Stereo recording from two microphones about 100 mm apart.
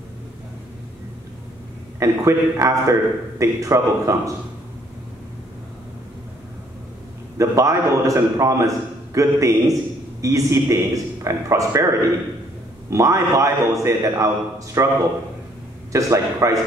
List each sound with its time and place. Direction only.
2.0 s a man's voice: 30° right (ahead or behind)
7.3 s a man's voice: 30° right (ahead or behind)
15.9 s a man's voice: 30° right (ahead or behind)